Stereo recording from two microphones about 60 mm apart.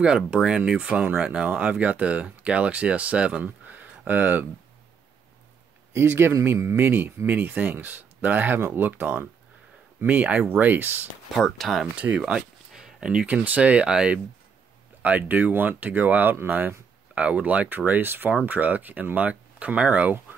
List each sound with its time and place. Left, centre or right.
0.0 s speech: centre
3.4 s a sound: right
5.9 s speech: right
9.9 s speech: right
11.3 s speech: centre
12.2 s a sound: centre
13.4 s speech: right